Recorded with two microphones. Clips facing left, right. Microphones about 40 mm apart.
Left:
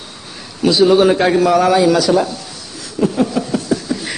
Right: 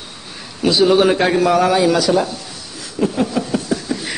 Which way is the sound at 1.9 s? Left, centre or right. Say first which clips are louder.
Left 2 dB; centre.